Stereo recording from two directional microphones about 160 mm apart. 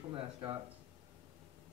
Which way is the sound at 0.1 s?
25° right (ahead or behind).